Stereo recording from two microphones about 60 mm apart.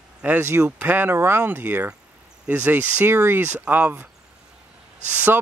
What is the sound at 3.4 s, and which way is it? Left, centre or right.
Speech, right.